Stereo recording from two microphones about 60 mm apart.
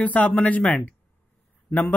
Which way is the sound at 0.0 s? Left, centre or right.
Left.